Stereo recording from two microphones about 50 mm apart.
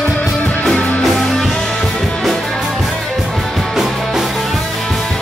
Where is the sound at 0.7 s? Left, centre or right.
Centre.